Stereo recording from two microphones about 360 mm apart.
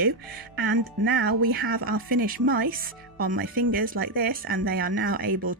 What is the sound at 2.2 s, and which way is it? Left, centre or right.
Speech, right.